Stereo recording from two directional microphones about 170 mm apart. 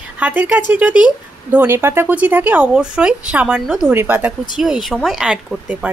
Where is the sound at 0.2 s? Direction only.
10° right (ahead or behind).